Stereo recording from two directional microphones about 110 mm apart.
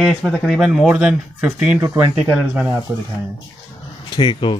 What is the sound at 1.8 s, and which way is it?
Speech, 25° right (ahead or behind).